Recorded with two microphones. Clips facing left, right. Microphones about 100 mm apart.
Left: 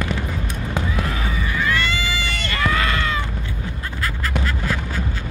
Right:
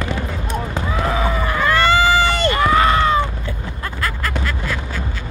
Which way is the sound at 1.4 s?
55° right (ahead or behind).